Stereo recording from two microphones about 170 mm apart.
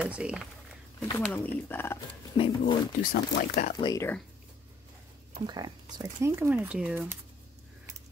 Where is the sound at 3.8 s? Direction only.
20° left (ahead or behind).